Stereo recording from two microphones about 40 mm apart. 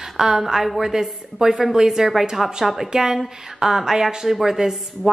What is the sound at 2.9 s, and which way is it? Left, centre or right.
A woman's voice, centre.